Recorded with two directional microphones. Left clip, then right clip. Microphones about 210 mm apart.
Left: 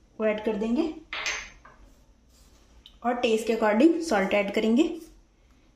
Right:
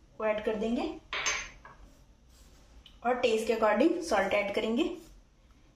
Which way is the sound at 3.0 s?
40° left (ahead or behind).